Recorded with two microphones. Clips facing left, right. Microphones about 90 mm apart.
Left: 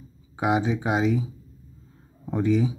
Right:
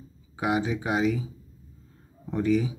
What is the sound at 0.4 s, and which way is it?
Speech, 20° left (ahead or behind).